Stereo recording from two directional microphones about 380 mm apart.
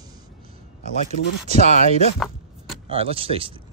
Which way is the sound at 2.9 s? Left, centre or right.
Centre.